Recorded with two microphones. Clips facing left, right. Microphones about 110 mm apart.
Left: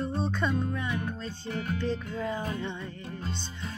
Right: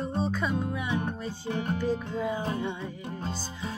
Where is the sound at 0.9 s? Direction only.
30° right (ahead or behind).